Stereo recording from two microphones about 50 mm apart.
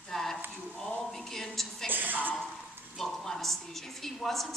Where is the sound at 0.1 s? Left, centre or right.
Centre.